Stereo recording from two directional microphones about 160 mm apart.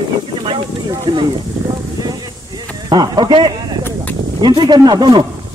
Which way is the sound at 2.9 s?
25° right (ahead or behind).